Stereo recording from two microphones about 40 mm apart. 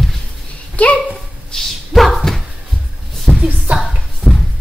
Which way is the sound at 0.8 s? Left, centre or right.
Left.